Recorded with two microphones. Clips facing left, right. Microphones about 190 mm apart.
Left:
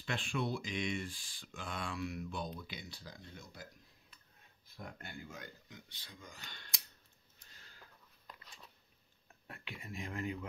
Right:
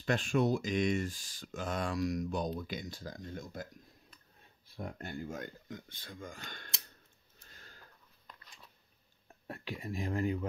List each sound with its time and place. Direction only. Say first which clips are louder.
0.0 s speech: right 8 dB; 45° right (ahead or behind)
4.7 s speech: right 8 dB; 40° right (ahead or behind)
7.4 s a sound: right 6 dB; 50° right (ahead or behind)
9.5 s speech: right 8 dB; 35° right (ahead or behind)